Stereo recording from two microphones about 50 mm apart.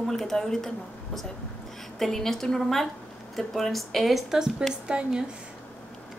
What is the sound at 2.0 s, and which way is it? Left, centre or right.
A woman's voice, centre.